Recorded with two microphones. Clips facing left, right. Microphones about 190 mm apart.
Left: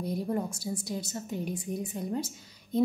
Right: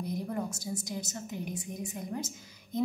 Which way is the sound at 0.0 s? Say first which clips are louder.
Left 3 dB; 30° left (ahead or behind).